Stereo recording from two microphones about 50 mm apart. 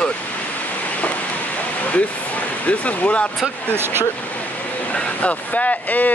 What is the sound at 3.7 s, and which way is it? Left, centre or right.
Speech, right.